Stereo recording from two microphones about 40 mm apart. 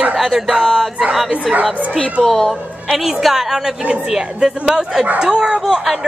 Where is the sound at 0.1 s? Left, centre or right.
Centre.